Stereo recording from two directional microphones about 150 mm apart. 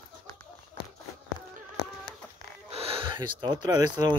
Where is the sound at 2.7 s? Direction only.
40° right (ahead or behind).